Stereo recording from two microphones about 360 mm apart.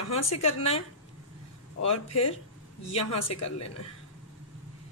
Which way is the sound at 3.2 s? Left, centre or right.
Left.